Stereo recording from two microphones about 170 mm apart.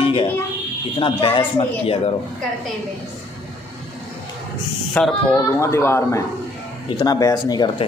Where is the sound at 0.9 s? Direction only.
30° left (ahead or behind).